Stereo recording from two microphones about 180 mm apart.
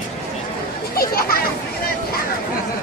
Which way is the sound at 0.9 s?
55° left (ahead or behind).